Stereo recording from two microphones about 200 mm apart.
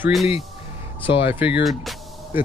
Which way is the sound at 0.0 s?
Centre (ahead or behind).